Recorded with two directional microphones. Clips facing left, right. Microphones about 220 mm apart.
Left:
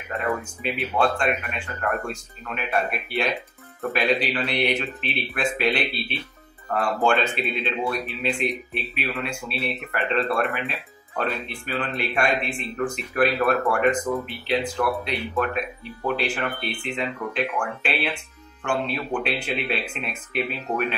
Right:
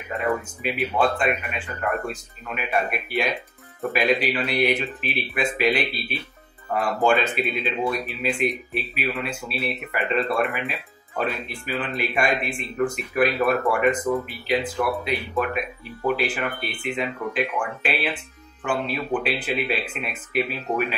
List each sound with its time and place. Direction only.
0.1 s speech: centre (ahead or behind)
16.8 s speech: 5° right (ahead or behind)